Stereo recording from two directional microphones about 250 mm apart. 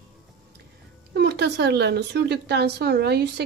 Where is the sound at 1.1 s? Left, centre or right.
Right.